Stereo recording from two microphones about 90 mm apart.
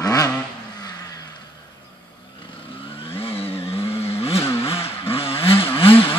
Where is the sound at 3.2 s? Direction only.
90° left.